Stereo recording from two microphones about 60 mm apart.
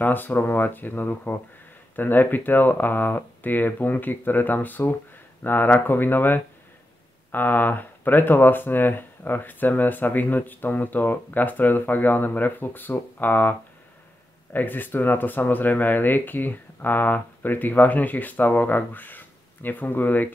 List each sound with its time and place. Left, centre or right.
0.0 s speech: left